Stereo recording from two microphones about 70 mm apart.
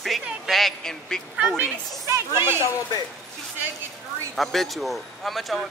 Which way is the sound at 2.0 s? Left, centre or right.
Right.